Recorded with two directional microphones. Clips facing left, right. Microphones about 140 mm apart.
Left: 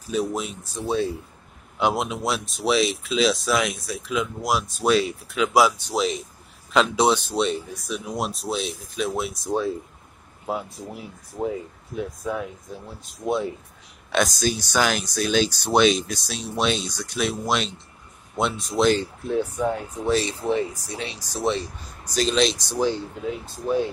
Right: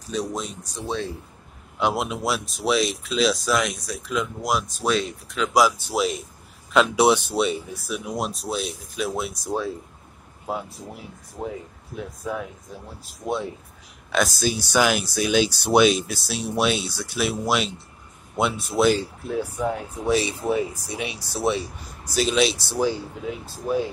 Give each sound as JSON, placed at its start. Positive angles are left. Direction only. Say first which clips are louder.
{"t": 0.1, "sound": "speech", "louder": "left 3 dB", "side_deg": 10}
{"t": 12.2, "sound": "speech", "louder": "left 2 dB", "side_deg": 0}